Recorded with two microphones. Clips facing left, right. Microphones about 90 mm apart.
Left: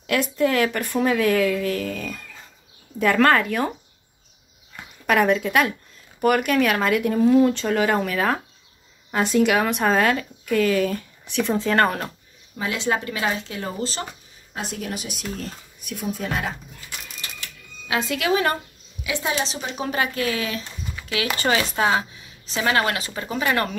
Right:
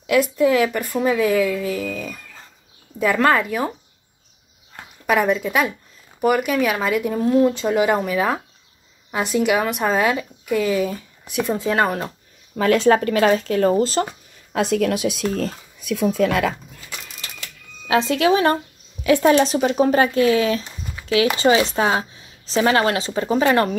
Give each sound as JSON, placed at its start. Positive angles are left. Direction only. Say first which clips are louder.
{"t": 0.0, "sound": "speech", "louder": "right 4 dB", "side_deg": -10}
{"t": 5.0, "sound": "speech", "louder": "right 1 dB", "side_deg": -5}
{"t": 9.1, "sound": "speech", "louder": "even", "side_deg": -5}
{"t": 12.5, "sound": "speech", "louder": "right 9 dB", "side_deg": -50}
{"t": 14.5, "sound": "speech", "louder": "right 11 dB", "side_deg": -90}
{"t": 17.8, "sound": "speech", "louder": "right 6 dB", "side_deg": -35}
{"t": 19.0, "sound": "speech", "louder": "right 11 dB", "side_deg": -50}